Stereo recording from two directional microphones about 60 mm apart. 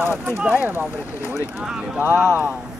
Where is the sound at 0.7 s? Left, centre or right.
Right.